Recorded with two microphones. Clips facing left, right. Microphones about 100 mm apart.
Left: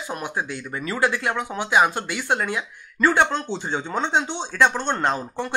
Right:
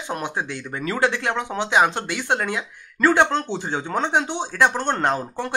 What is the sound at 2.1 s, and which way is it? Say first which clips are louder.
Speech: right 1 dB; 50° right (ahead or behind).